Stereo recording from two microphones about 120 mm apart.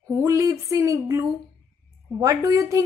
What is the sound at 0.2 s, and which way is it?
A woman's voice, 25° right (ahead or behind).